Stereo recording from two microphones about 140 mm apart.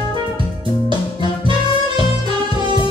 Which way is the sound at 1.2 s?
35° left (ahead or behind).